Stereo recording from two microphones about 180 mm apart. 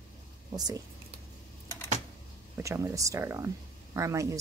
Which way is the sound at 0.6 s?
20° right (ahead or behind).